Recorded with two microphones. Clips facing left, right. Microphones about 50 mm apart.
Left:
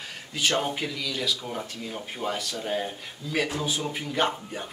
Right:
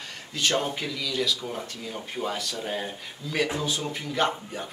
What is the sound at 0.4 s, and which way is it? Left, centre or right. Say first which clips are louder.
Speech: even; centre.